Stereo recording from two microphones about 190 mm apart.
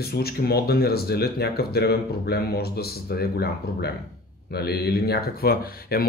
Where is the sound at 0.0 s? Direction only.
55° left (ahead or behind).